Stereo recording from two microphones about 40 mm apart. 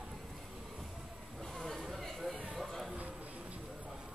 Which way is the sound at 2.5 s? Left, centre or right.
Centre.